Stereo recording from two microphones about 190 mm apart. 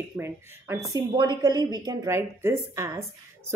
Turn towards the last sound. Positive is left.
turn(degrees=-15)  # may be behind; listen again after turning